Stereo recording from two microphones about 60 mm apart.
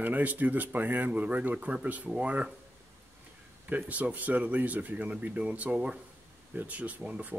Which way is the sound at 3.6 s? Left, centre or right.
Right.